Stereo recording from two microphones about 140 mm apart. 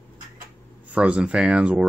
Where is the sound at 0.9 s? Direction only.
10° right (ahead or behind).